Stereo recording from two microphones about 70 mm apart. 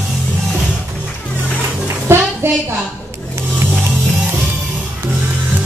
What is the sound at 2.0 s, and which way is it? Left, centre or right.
Music, right.